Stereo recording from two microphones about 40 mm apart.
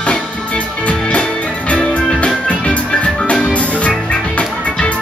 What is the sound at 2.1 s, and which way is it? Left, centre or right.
Music, left.